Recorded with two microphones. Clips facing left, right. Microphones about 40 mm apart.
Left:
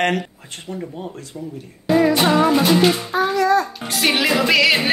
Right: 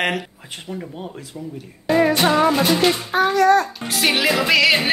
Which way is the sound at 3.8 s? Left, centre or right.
Centre.